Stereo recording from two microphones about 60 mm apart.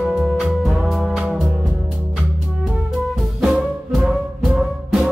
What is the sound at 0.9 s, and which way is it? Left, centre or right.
Music, centre.